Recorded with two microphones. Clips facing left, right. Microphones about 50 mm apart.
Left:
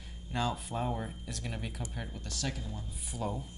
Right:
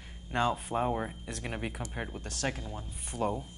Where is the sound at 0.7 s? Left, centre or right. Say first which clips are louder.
Right 4 dB; right.